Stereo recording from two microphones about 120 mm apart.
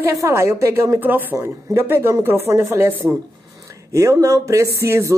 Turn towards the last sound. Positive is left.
turn(degrees=-20)  # may be behind; listen again after turning